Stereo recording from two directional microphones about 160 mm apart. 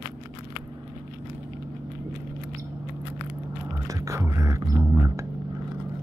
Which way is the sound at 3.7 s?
20° right (ahead or behind).